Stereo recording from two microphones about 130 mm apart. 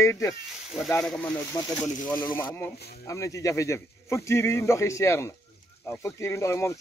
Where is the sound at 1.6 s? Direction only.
30° left (ahead or behind).